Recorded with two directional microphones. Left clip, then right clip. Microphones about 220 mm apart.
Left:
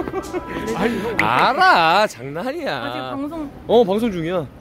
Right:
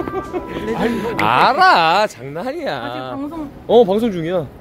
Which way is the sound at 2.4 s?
5° left (ahead or behind).